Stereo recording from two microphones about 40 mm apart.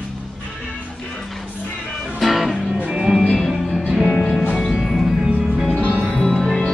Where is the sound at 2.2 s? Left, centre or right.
Centre.